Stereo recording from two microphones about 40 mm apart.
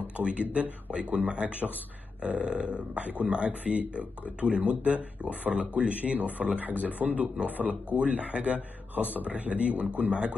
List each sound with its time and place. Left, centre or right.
0.2 s speech: right